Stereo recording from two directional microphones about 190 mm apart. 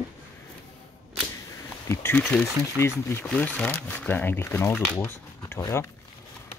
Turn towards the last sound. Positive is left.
turn(degrees=15)  # may be behind; listen again after turning